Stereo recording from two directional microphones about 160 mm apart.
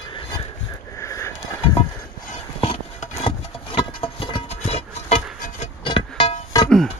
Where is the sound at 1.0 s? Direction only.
20° left (ahead or behind).